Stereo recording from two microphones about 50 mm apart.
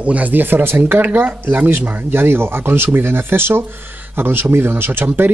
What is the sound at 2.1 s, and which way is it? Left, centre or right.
Speech, right.